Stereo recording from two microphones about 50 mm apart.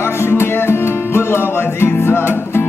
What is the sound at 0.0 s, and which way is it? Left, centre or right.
Music, left.